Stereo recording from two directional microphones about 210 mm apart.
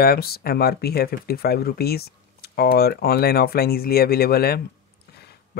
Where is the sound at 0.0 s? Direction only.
45° left (ahead or behind).